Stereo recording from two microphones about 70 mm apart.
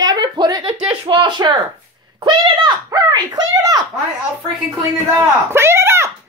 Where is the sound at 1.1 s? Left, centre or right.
Right.